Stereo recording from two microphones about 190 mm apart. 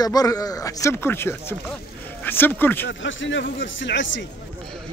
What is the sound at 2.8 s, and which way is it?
Speech, 80° left.